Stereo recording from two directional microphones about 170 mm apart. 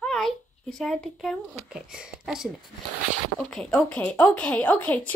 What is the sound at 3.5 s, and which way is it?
Speech, 5° left (ahead or behind).